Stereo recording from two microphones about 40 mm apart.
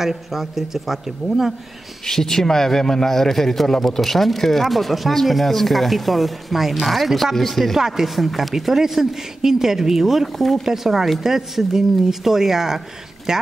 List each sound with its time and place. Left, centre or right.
0.0 s speech: centre
2.0 s speech: centre